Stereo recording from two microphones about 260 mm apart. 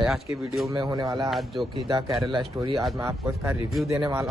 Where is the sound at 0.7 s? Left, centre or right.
Centre.